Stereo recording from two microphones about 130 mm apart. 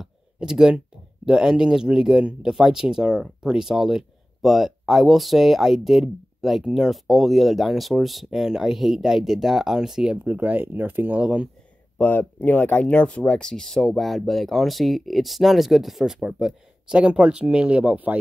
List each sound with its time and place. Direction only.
0.0 s speech: 5° right (ahead or behind)
12.0 s speech: 15° left (ahead or behind); by 18.1 s 10° right (ahead or behind)